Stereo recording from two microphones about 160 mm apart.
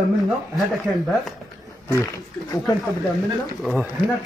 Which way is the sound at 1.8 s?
20° left (ahead or behind).